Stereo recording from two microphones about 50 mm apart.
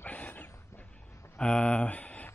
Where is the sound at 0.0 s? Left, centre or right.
Left.